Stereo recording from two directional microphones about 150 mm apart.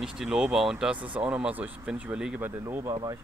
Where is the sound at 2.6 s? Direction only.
20° right (ahead or behind).